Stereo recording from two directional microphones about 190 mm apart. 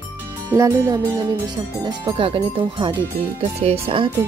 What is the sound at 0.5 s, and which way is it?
Speech, 15° right (ahead or behind).